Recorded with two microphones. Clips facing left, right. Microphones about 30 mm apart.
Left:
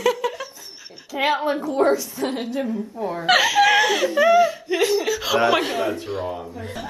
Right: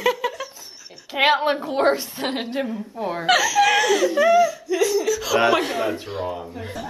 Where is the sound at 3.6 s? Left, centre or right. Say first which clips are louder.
Left 1 dB; centre.